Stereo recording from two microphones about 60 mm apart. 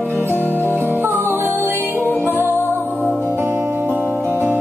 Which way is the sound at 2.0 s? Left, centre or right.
Left.